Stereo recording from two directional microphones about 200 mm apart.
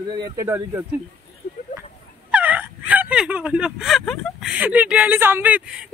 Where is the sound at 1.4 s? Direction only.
50° left (ahead or behind).